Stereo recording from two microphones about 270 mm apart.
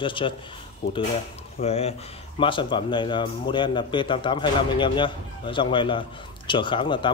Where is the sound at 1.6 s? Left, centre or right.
Left.